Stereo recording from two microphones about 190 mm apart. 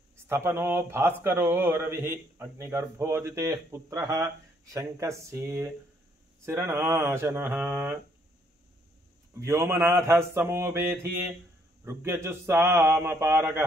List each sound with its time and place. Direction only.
0.3 s speech: 15° right (ahead or behind)
9.3 s speech: 15° right (ahead or behind)